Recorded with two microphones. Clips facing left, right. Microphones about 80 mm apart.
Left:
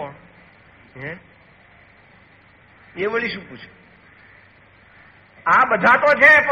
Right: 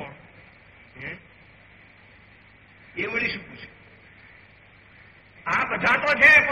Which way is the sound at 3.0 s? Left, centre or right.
Left.